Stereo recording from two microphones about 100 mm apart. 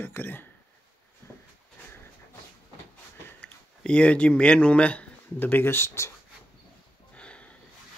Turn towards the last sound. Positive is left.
turn(degrees=10)  # may be behind; listen again after turning